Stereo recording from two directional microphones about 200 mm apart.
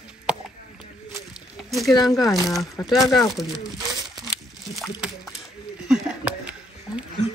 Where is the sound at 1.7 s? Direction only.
Centre (ahead or behind).